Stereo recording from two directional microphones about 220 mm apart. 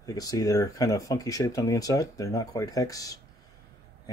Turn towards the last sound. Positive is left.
turn(degrees=15)  # may be behind; listen again after turning